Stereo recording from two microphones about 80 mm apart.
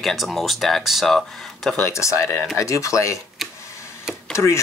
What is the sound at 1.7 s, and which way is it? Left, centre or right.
Speech, left.